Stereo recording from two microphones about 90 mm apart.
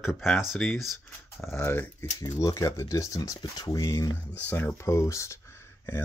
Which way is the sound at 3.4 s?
55° left (ahead or behind).